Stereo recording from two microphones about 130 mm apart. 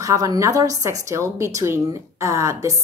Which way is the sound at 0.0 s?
30° right (ahead or behind).